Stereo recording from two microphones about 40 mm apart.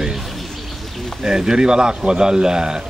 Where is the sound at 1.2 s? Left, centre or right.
Centre.